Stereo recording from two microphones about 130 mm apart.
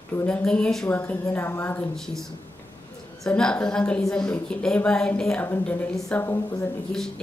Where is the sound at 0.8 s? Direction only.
15° left (ahead or behind).